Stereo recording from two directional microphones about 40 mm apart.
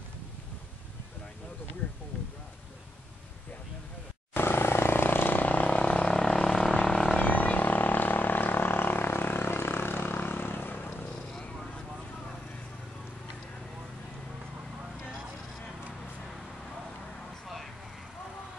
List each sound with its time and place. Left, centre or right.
4.3 s vehicle: left
6.1 s vehicle: centre
6.7 s wild animals: left
7.2 s a sound: left
11.3 s vehicle: centre